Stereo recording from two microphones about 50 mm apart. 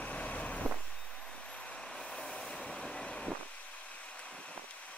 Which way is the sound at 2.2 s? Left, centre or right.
Centre.